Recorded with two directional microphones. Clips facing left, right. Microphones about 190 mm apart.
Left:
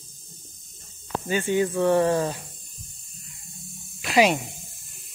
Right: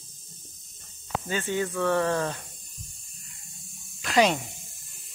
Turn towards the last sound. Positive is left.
turn(degrees=10)  # may be behind; listen again after turning